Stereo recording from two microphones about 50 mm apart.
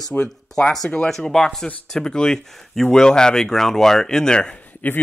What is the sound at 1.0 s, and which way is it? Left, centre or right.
Speech, centre.